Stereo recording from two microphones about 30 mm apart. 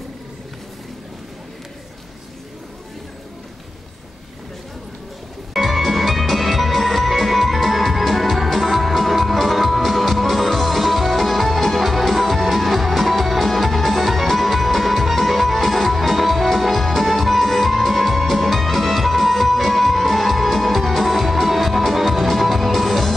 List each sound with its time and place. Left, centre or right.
5.5 s music: centre